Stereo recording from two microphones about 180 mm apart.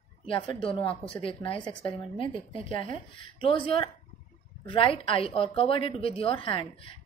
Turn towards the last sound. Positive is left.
turn(degrees=30)  # may be behind; listen again after turning